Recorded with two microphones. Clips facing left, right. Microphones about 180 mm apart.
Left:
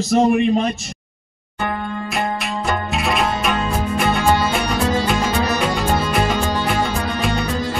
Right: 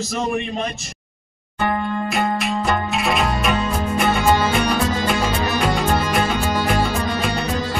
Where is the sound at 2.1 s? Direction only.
Centre (ahead or behind).